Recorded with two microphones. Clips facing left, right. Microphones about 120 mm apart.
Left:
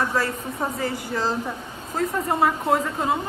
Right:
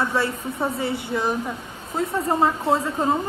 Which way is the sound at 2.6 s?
30° right (ahead or behind).